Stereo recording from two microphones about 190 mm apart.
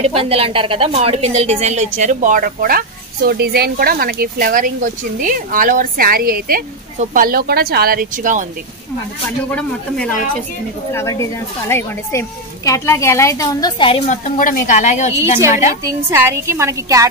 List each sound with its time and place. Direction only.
0.0 s a woman's voice: 30° right (ahead or behind)
9.6 s speech: 5° left (ahead or behind); by 13.9 s 25° left (ahead or behind)
14.0 s a woman's voice: 35° left (ahead or behind)
16.1 s a woman's voice: 15° right (ahead or behind)